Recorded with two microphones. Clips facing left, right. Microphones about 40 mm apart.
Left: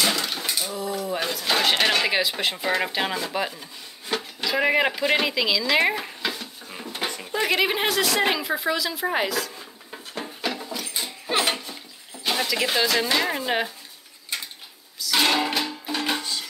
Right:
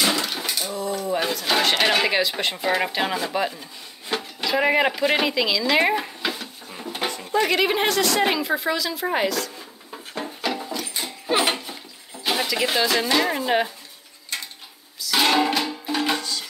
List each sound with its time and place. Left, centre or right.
0.0 s speech: centre
7.2 s a sound: centre
14.3 s dishes: centre
15.0 s music: centre
16.2 s music: centre